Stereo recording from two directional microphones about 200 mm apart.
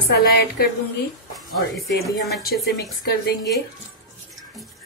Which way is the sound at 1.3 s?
Centre (ahead or behind).